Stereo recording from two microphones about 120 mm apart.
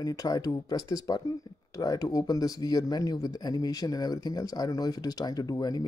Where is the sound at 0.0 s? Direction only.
30° left (ahead or behind).